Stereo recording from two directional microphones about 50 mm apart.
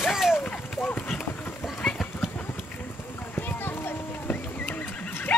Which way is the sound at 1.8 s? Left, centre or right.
Centre.